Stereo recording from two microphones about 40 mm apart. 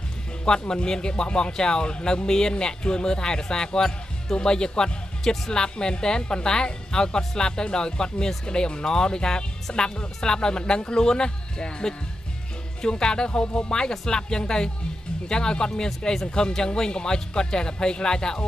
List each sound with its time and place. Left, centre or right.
0.5 s speech: centre